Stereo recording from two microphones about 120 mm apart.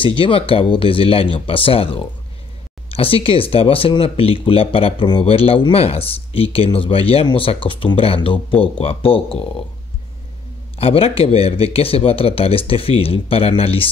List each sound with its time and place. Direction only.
0.0 s speech: 45° left (ahead or behind)
10.8 s speech: 55° left (ahead or behind)